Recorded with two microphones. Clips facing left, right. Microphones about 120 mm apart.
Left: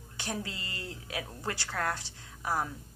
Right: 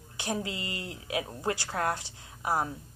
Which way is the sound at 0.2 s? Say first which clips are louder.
Right 4 dB; 15° right (ahead or behind).